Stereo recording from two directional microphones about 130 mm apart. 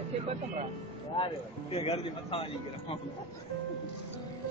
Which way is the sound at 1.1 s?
45° left (ahead or behind).